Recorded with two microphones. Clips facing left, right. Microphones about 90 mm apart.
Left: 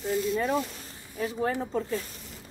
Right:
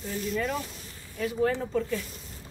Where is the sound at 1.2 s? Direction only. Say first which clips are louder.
Right 2 dB; 30° left (ahead or behind).